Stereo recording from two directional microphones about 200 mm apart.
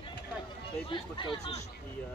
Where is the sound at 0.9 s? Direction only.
25° left (ahead or behind).